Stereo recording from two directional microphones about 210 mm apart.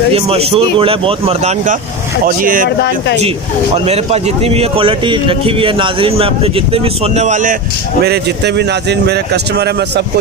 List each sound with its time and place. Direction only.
0.1 s speech: 25° right (ahead or behind)
3.2 s speech: 30° right (ahead or behind)
8.0 s speech: 50° right (ahead or behind)